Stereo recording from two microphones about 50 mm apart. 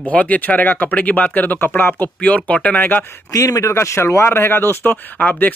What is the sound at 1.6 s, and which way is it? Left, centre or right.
Speech, left.